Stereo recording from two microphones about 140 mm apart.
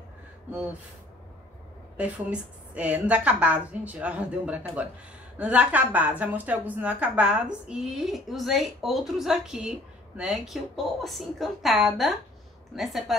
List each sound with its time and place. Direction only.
0.5 s a woman's voice: 10° right (ahead or behind)
2.0 s a woman's voice: 10° right (ahead or behind)